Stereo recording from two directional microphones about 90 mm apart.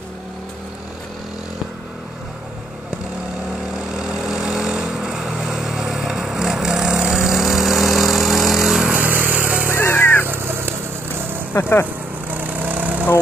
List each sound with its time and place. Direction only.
3.9 s vehicle: 10° right (ahead or behind)
8.9 s vehicle: 20° right (ahead or behind)
9.8 s vehicle: 25° left (ahead or behind)
10.2 s vehicle: 25° right (ahead or behind)
11.5 s speech: 35° left (ahead or behind)
12.3 s lawn mower: 20° right (ahead or behind)